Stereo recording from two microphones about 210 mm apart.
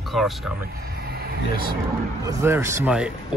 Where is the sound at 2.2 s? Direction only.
15° right (ahead or behind).